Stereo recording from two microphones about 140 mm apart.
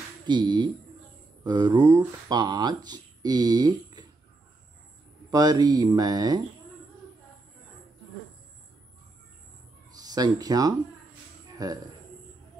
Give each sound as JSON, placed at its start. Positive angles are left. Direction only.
{"t": 0.3, "sound": "speech", "side_deg": -30}
{"t": 5.3, "sound": "speech", "side_deg": -30}
{"t": 9.9, "sound": "speech", "side_deg": -30}
{"t": 11.5, "sound": "a sound", "side_deg": -25}